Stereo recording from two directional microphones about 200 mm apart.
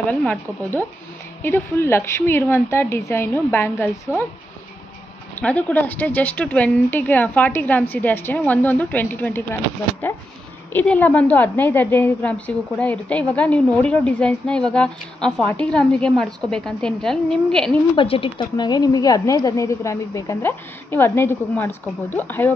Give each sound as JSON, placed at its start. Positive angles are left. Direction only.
{"t": 0.0, "sound": "a woman's voice", "side_deg": 10}
{"t": 5.4, "sound": "a woman's voice", "side_deg": 5}
{"t": 17.9, "sound": "a woman's voice", "side_deg": 25}